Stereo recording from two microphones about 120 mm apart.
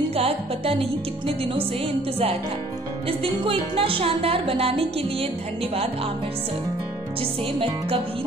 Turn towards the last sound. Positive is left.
turn(degrees=-50)  # may be behind; listen again after turning